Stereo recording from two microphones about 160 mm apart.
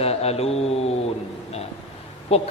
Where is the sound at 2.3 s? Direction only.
40° left (ahead or behind).